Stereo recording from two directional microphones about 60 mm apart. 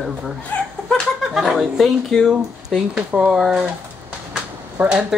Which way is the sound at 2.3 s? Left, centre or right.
Centre.